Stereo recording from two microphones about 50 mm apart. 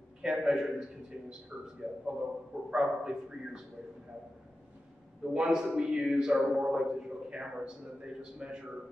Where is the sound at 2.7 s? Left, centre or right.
Centre.